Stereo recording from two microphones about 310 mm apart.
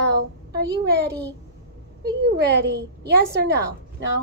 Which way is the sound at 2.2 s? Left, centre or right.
Right.